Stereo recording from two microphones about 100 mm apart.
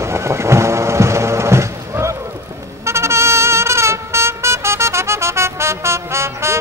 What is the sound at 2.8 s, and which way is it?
Vehicle, 25° right (ahead or behind).